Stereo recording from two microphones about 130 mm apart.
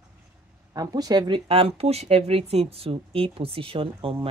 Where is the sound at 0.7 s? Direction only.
30° right (ahead or behind).